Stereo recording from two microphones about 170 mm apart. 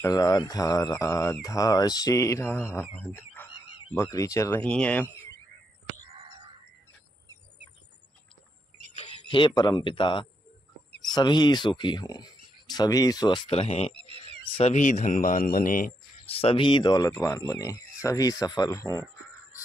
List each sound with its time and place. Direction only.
0.0 s speech: 20° left (ahead or behind)
8.9 s speech: 35° left (ahead or behind)
13.5 s speech: 40° left (ahead or behind); by 15.9 s 55° left (ahead or behind)
16.3 s speech: 35° left (ahead or behind)